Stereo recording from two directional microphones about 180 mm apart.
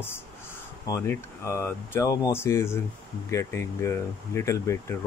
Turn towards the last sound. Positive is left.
turn(degrees=15)  # may be behind; listen again after turning